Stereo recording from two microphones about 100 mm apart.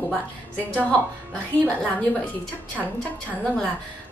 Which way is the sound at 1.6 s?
10° left (ahead or behind).